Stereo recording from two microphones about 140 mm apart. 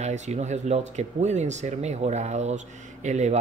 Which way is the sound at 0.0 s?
55° right (ahead or behind).